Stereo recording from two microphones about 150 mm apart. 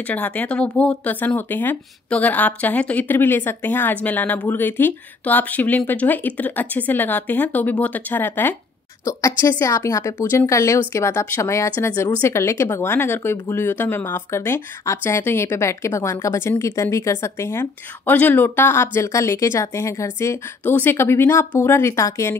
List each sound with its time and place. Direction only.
0.0 s a woman's voice: 10° left (ahead or behind)